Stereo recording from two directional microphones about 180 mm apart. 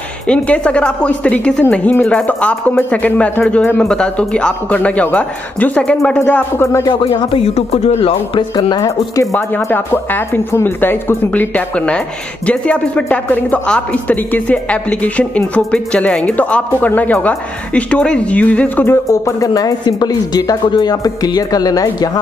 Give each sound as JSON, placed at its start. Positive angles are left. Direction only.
{"t": 0.3, "sound": "speech", "side_deg": 5}
{"t": 6.9, "sound": "speech", "side_deg": 25}
{"t": 8.5, "sound": "speech", "side_deg": 20}